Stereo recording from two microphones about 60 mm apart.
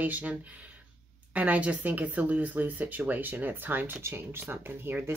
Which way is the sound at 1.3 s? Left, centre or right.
Right.